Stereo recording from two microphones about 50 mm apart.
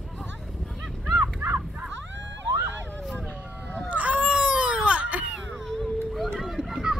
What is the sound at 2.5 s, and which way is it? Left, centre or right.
Vehicle, right.